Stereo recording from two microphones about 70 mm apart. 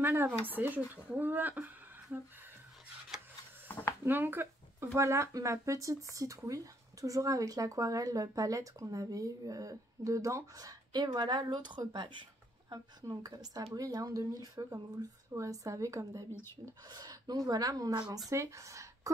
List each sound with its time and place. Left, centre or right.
0.0 s speech: right
0.7 s speech: centre
3.6 s a sound: left
4.0 s speech: right
11.1 s a woman's voice: right
13.0 s speech: right
16.9 s speech: right
18.3 s speech: right